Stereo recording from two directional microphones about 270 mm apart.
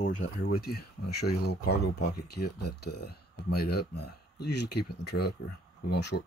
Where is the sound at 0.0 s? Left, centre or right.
Left.